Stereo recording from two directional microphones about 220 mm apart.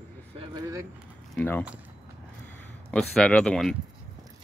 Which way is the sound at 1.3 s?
10° left (ahead or behind).